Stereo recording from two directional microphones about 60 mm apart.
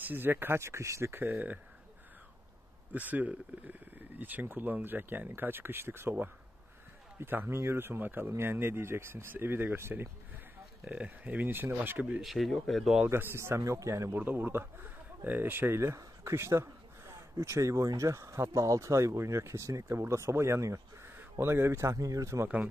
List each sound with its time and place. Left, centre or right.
0.0 s speech: right
1.1 s speech: right
2.9 s speech: right
10.9 s speech: right
12.2 s speech: centre
13.4 s speech: right
14.1 s speech: right
16.3 s speech: right
21.9 s speech: right